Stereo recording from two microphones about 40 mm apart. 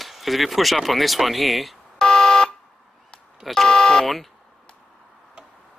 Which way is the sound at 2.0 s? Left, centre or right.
Centre.